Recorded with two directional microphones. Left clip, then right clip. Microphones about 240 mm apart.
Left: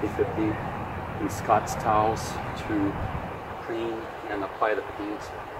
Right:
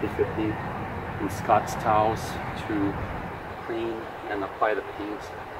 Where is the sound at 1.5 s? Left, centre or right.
Centre.